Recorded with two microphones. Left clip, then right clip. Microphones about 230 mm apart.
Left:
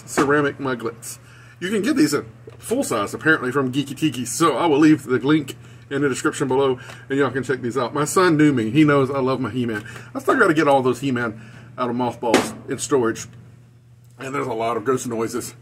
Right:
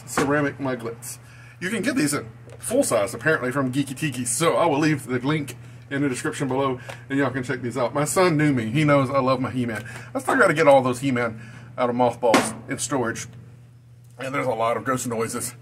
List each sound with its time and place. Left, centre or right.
0.3 s speech: centre
14.1 s speech: centre